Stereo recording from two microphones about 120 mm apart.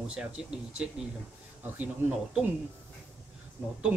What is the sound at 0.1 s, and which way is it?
Speech, 10° right (ahead or behind).